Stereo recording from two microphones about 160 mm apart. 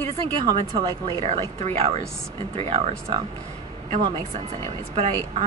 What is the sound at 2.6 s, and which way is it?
Speech, 40° right (ahead or behind).